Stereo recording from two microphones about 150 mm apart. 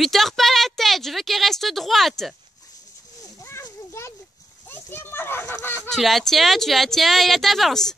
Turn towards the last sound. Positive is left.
turn(degrees=5)  # may be behind; listen again after turning